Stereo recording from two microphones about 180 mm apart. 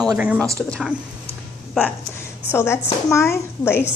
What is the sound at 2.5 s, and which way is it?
Speech, 15° left (ahead or behind).